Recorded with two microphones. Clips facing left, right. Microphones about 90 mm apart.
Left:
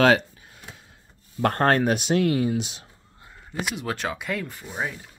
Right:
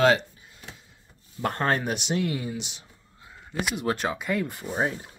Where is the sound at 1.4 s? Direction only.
60° left (ahead or behind).